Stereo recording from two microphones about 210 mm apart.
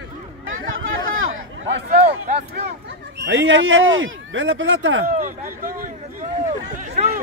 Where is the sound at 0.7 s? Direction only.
70° right (ahead or behind).